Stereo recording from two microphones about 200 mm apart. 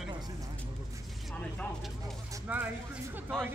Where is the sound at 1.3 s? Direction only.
5° left (ahead or behind).